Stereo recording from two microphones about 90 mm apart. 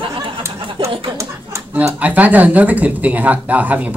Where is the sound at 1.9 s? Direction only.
15° right (ahead or behind).